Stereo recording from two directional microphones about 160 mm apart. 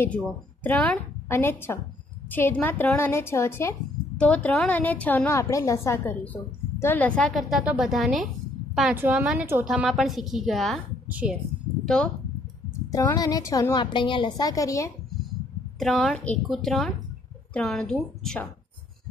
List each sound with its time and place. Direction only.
0.7 s a woman's voice: 10° left (ahead or behind)
12.9 s a woman's voice: 20° left (ahead or behind)
15.8 s a woman's voice: centre (ahead or behind)